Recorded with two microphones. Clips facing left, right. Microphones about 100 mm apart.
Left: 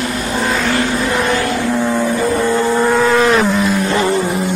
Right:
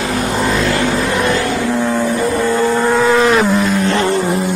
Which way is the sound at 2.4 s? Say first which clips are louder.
Even; 15° left (ahead or behind).